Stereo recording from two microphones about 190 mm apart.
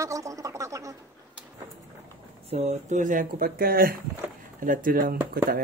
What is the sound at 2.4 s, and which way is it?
Speech, 35° right (ahead or behind).